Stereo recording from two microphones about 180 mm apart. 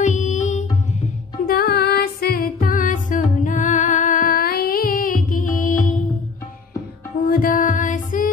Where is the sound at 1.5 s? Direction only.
60° left (ahead or behind).